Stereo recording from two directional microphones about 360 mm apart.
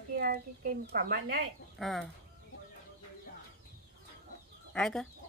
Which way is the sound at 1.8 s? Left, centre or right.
Centre.